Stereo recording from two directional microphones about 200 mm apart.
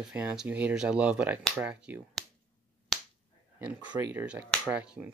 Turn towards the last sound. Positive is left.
turn(degrees=-5)  # may be behind; listen again after turning